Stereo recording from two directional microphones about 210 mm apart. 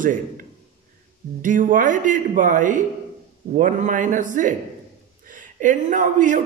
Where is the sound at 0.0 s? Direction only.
40° right (ahead or behind).